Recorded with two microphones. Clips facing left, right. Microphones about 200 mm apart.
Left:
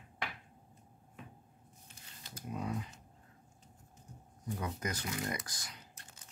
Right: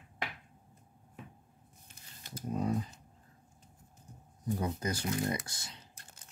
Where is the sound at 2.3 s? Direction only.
35° right (ahead or behind).